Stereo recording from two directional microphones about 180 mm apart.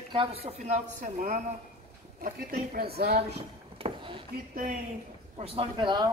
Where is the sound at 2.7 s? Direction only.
60° right (ahead or behind).